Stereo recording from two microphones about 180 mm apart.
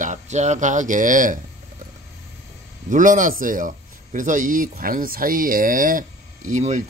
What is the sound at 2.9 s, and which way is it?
Speech, 45° right (ahead or behind).